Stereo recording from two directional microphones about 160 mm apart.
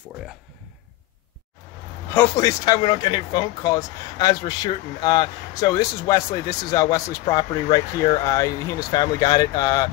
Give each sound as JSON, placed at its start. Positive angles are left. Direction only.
{"t": 2.1, "sound": "speech", "side_deg": 20}